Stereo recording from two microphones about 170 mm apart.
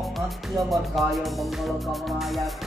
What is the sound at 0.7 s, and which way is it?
Speech, centre (ahead or behind).